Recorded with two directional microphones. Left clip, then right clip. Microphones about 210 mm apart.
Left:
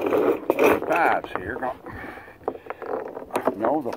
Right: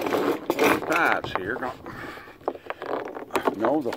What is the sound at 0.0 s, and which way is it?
Scrape, 15° right (ahead or behind).